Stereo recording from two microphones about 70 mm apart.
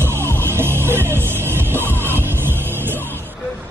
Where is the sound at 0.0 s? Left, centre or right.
Right.